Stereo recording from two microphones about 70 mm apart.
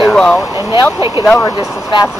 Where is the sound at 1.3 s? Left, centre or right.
Left.